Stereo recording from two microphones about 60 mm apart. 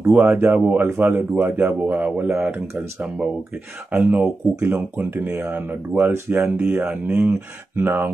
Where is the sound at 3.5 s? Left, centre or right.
Right.